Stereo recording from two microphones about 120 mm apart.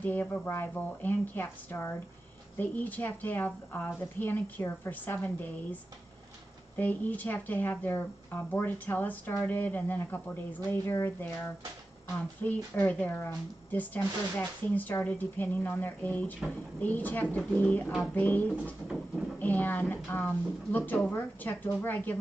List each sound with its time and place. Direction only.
0.0 s speech: 15° left (ahead or behind)
6.8 s speech: 15° left (ahead or behind)